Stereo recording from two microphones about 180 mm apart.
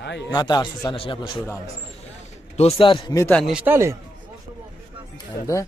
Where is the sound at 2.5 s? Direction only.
30° left (ahead or behind).